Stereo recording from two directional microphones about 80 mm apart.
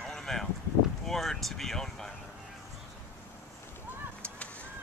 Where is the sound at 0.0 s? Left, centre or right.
Centre.